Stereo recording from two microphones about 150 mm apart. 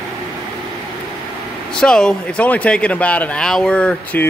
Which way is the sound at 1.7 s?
5° left (ahead or behind).